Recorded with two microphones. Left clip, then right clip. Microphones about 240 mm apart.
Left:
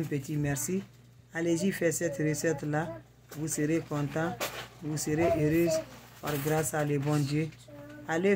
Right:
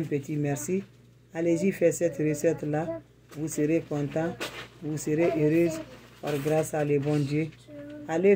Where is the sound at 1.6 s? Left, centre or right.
Centre.